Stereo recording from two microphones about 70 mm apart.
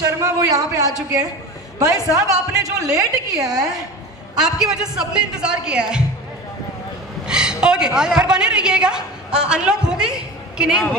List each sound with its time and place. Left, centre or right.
0.0 s a man's voice: right
4.4 s a woman's voice: centre
7.2 s a woman's voice: centre